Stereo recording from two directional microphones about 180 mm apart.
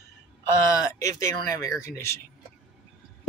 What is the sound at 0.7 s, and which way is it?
Speech, 20° left (ahead or behind).